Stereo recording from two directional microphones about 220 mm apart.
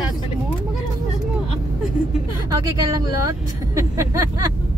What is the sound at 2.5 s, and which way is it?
Speech, 15° right (ahead or behind).